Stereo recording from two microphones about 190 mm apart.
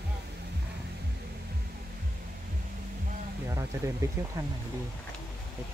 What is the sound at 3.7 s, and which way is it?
Speech, 15° right (ahead or behind).